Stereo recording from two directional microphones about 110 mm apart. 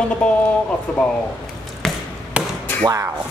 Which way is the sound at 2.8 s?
30° right (ahead or behind).